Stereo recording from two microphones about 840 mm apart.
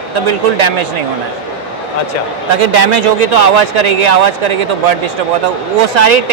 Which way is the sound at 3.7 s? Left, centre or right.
Right.